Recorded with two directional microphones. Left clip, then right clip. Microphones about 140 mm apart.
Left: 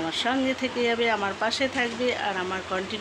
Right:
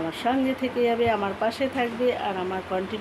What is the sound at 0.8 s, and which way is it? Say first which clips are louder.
Speech: right 2 dB; 10° right (ahead or behind).